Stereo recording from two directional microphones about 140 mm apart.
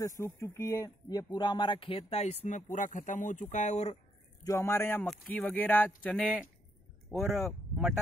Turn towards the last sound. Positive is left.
turn(degrees=0)  # may be behind; listen again after turning